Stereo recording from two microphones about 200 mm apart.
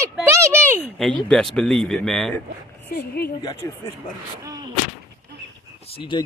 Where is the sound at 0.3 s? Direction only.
10° right (ahead or behind).